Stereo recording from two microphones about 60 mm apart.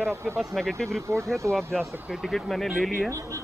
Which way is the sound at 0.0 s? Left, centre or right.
Right.